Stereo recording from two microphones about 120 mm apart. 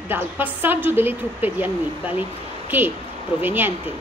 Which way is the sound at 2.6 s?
15° right (ahead or behind).